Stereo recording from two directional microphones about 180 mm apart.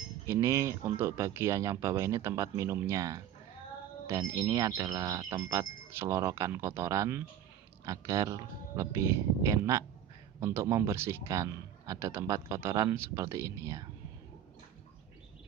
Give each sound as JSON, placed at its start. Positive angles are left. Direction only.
{"t": 0.3, "sound": "speech", "side_deg": -15}